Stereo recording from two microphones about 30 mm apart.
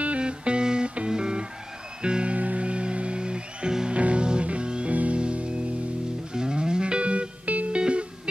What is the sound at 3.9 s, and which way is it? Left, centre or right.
Music, right.